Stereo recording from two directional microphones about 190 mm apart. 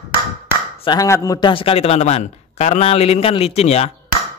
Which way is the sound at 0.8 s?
15° left (ahead or behind).